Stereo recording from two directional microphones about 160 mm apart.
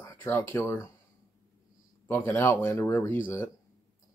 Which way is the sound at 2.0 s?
10° left (ahead or behind).